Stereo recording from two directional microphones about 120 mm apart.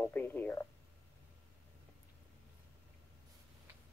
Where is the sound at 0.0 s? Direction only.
15° left (ahead or behind).